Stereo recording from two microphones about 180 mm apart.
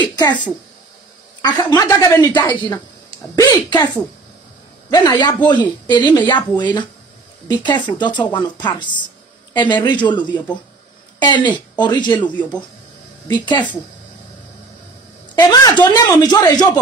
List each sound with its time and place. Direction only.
0.0 s a woman's voice: 25° left (ahead or behind)
1.4 s a woman's voice: 20° left (ahead or behind)
4.9 s a woman's voice: 25° left (ahead or behind)
10.3 s speech: 10° left (ahead or behind)
11.1 s a woman's voice: 25° left (ahead or behind)
13.3 s a woman's voice: 25° left (ahead or behind)
15.3 s a woman's voice: 20° left (ahead or behind)